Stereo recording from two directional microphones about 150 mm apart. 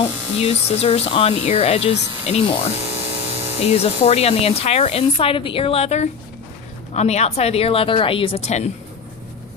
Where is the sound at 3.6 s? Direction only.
45° left (ahead or behind).